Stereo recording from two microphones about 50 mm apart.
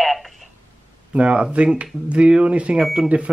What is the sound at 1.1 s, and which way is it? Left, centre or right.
Speech, right.